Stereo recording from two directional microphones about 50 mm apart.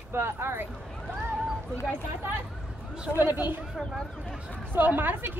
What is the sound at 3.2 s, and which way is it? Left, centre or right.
Speech, right.